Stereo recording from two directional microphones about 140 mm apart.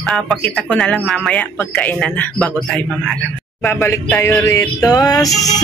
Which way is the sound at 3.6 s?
15° left (ahead or behind).